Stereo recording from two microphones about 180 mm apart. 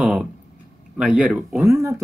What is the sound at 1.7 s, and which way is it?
Speech, 15° right (ahead or behind).